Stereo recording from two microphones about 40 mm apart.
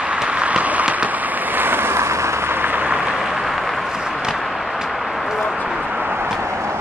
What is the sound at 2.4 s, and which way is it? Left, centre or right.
Vehicle, right.